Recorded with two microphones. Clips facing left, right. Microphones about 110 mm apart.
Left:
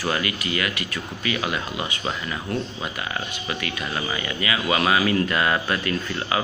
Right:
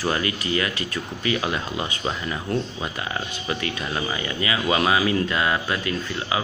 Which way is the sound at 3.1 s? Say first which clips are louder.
Right 1 dB; 30° right (ahead or behind).